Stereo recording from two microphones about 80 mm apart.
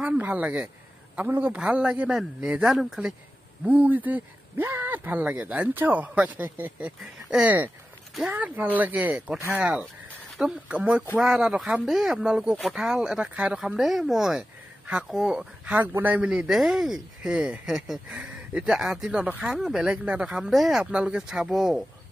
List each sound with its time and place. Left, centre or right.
0.2 s speech: centre
3.6 s speech: right
7.0 s speech: centre
7.4 s speech: right
13.6 s speech: centre
20.5 s speech: centre
20.8 s speech: centre